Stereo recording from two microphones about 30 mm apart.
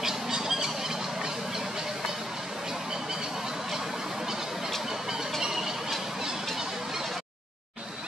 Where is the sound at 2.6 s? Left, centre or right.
Centre.